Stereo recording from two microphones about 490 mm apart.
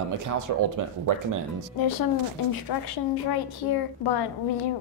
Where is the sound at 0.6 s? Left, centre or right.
Right.